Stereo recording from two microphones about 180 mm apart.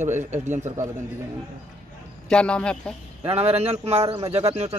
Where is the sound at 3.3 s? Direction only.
35° right (ahead or behind).